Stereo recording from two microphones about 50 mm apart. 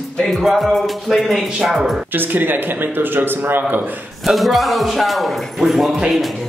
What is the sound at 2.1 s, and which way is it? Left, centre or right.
Speech, right.